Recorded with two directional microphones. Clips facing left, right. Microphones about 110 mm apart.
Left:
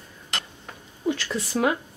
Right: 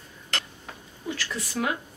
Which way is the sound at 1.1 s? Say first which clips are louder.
Left 6 dB; 25° left (ahead or behind).